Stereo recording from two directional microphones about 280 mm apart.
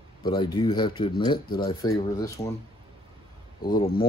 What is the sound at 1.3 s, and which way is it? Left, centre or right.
Speech, left.